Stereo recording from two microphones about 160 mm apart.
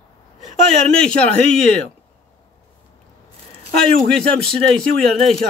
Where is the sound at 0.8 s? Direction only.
5° left (ahead or behind).